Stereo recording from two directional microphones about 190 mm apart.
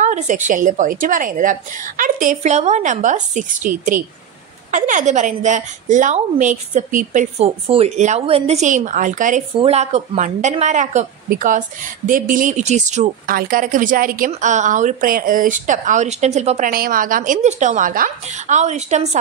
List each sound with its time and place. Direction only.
0.0 s a woman's voice: 40° right (ahead or behind)